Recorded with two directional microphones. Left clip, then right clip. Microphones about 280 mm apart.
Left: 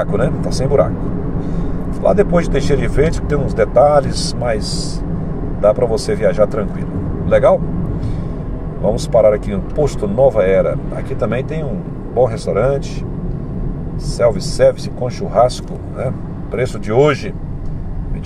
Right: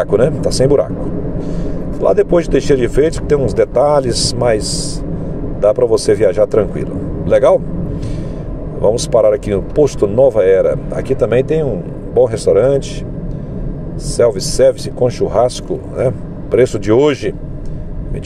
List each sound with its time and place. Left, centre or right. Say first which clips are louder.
0.1 s speech: right 6 dB; right
2.0 s speech: right 2 dB; right
8.9 s speech: left 1 dB; right
14.1 s speech: right 3 dB; right
16.5 s speech: right 4 dB; right